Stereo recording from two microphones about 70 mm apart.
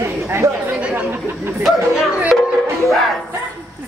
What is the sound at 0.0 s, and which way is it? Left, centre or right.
Chatter, right.